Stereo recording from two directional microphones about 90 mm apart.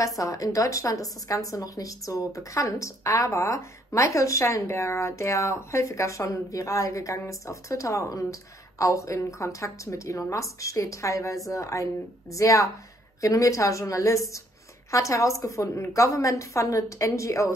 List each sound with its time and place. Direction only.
0.0 s a woman's voice: 40° left (ahead or behind)